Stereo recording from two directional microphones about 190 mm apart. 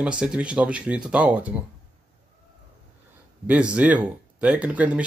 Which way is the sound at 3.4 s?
5° right (ahead or behind).